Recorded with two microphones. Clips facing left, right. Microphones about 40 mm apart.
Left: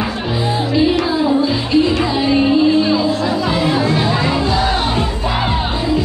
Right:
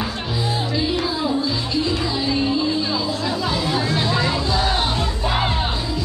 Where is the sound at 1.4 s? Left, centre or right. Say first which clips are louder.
Left 8 dB; left.